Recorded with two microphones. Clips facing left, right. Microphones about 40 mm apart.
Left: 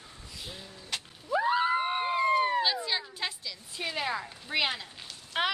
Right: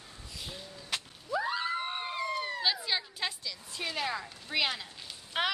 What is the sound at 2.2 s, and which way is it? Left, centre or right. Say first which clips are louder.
Police car: left 11 dB; left.